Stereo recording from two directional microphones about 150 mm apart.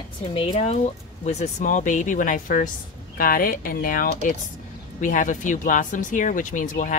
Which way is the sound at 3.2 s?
75° left (ahead or behind).